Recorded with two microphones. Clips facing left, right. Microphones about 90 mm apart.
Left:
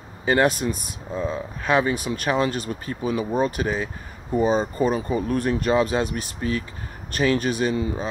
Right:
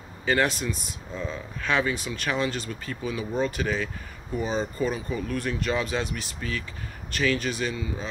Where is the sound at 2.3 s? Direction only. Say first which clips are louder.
Left 4 dB; 45° left (ahead or behind).